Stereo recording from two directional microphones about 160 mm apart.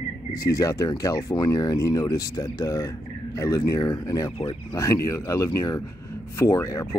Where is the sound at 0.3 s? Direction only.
20° left (ahead or behind).